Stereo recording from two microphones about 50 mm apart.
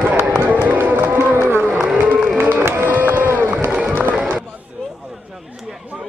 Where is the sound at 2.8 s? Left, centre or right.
Right.